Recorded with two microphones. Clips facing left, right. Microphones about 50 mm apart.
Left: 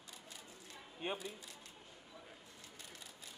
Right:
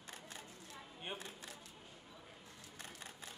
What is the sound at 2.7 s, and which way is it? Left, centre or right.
Camera, right.